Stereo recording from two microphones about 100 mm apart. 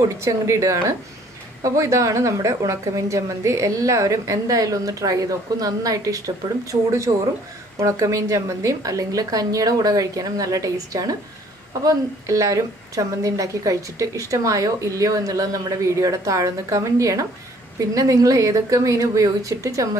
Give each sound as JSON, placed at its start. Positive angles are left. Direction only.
{"t": 0.2, "sound": "a woman's voice", "side_deg": -30}